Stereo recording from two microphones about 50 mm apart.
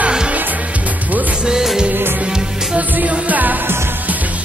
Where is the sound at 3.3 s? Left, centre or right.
Right.